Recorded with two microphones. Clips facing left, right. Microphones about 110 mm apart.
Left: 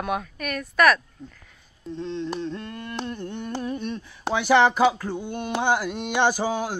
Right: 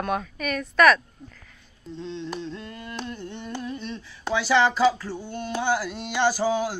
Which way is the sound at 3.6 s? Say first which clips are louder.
Left 4 dB; 50° left (ahead or behind).